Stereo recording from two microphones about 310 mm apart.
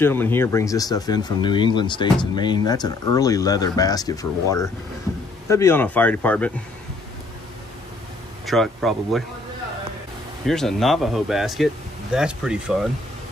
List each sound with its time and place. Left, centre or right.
0.0 s a man's voice: centre
8.5 s a man's voice: centre
10.4 s a man's voice: centre